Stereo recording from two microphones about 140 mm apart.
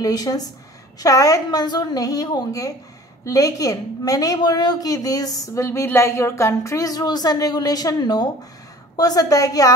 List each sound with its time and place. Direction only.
0.0 s a woman's voice: 25° left (ahead or behind)